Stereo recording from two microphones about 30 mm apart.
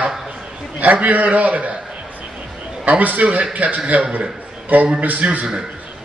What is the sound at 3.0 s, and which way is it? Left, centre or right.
A man's voice, right.